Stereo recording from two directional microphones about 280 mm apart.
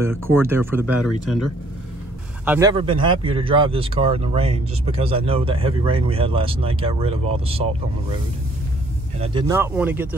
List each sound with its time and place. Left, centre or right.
0.0 s speech: centre
2.4 s speech: centre
2.7 s speech: centre
9.2 s speech: centre